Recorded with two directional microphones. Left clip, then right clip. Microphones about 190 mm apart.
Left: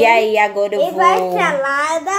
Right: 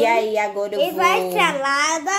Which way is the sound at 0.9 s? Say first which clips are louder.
Left 5 dB; 35° right (ahead or behind).